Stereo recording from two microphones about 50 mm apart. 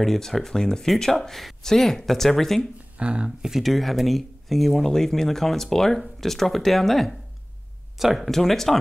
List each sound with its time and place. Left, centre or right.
0.0 s speech: centre
3.0 s speech: right
3.3 s speech: centre